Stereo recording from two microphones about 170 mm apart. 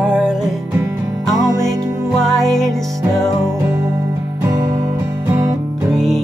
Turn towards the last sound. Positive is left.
turn(degrees=0)  # may be behind; listen again after turning